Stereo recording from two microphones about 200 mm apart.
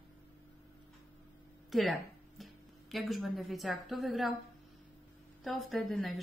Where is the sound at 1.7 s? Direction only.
Centre (ahead or behind).